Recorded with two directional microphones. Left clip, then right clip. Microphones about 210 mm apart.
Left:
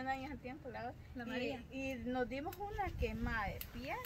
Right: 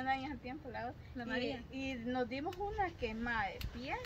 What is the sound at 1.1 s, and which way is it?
Speech, 5° left (ahead or behind).